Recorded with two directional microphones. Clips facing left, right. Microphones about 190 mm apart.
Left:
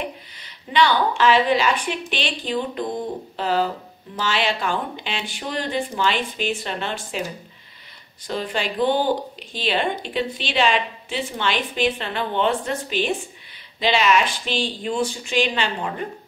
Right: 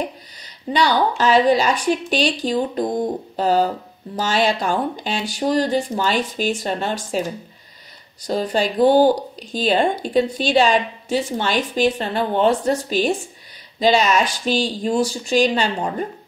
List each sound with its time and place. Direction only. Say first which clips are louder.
0.0 s speech: right 4 dB; 40° right (ahead or behind)
8.2 s speech: right 6 dB; 40° right (ahead or behind)